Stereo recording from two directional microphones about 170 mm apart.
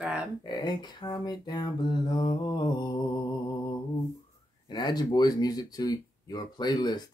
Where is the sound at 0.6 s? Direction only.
25° left (ahead or behind).